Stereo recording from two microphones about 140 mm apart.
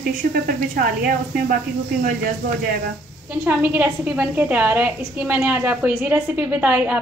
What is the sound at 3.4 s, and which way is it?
A woman's voice, 10° right (ahead or behind).